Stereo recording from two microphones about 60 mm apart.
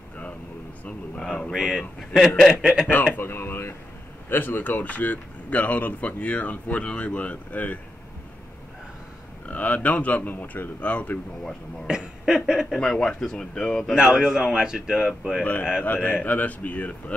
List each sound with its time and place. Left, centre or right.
1.5 s speech: centre
2.5 s speech: centre
3.2 s a sound: left
4.3 s speech: left
9.5 s speech: left
11.9 s speech: centre
12.6 s speech: centre
13.9 s speech: centre
15.8 s speech: left